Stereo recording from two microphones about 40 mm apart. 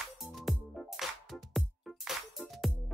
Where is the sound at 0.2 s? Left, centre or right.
Centre.